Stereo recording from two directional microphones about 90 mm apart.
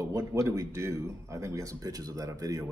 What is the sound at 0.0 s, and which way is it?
Speech, 35° right (ahead or behind).